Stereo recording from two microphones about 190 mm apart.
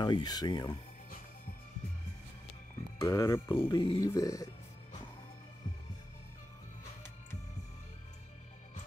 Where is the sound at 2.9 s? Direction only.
20° left (ahead or behind).